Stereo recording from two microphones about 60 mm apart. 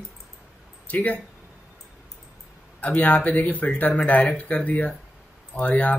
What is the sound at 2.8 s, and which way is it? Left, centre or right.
Speech, left.